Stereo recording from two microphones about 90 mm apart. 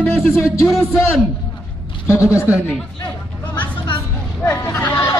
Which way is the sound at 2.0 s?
35° left (ahead or behind).